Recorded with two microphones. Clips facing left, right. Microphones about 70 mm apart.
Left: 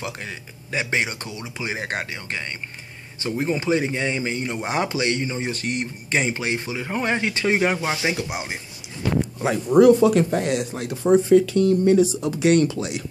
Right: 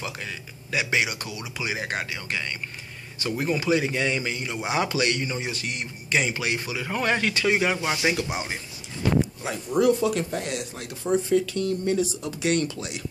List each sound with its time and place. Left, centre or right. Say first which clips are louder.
0.2 s a man's voice: left 1 dB; left
5.5 s speech: left 5 dB; left
8.0 s a man's voice: even; centre
9.4 s speech: left 8 dB; left
10.5 s a man's voice: left 8 dB; left